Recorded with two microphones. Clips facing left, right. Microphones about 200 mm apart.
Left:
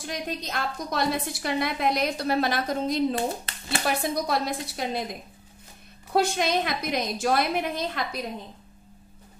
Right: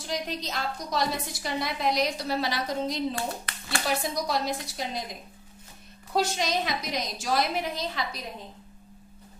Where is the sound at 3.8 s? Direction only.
55° left (ahead or behind).